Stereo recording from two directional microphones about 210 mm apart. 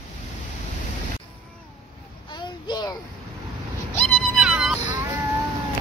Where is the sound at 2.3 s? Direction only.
20° left (ahead or behind).